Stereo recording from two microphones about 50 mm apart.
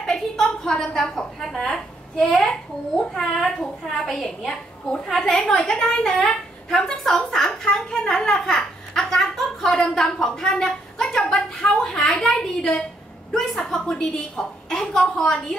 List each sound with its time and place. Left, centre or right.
0.0 s a sound: centre
3.2 s a child's voice: centre
4.5 s a child's voice: centre
5.0 s a woman's voice: centre